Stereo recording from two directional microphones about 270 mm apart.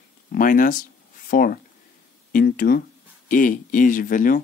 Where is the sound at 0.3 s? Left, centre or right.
Left.